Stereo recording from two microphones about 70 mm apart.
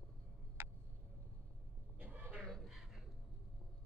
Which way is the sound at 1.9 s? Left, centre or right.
Right.